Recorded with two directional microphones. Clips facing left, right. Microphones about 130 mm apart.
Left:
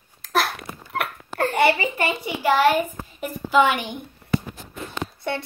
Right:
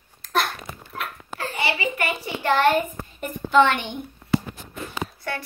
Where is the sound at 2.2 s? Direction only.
5° left (ahead or behind).